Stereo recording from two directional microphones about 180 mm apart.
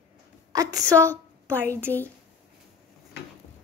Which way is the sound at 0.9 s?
10° left (ahead or behind).